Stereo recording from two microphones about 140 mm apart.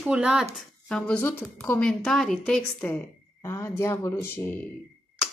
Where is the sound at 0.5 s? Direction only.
5° left (ahead or behind).